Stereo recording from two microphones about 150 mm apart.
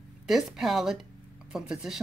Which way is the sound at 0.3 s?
Centre (ahead or behind).